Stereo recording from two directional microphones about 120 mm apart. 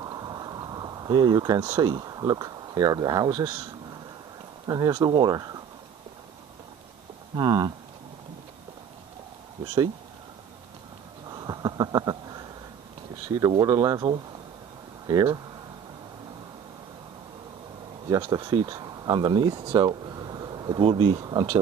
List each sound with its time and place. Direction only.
0.0 s a sound: 35° right (ahead or behind)
1.8 s speech: 35° right (ahead or behind)
4.6 s speech: 35° right (ahead or behind)
7.3 s speech: 35° right (ahead or behind)
11.2 s a sound: 35° right (ahead or behind)
13.3 s speech: 30° right (ahead or behind)
18.1 s speech: 30° right (ahead or behind)
19.7 s a sound: 35° right (ahead or behind)
20.9 s speech: 40° right (ahead or behind)